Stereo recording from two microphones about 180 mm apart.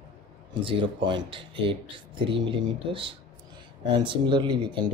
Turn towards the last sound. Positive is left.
turn(degrees=-25)  # may be behind; listen again after turning